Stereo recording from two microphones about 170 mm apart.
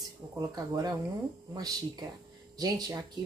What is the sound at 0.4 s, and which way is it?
A woman's voice, 20° right (ahead or behind).